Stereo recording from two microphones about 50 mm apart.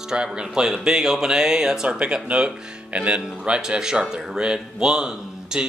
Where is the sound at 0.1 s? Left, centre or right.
Centre.